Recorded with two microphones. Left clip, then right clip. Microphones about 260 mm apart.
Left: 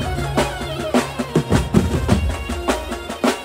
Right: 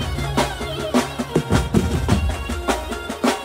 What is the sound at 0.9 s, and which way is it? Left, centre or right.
Music, centre.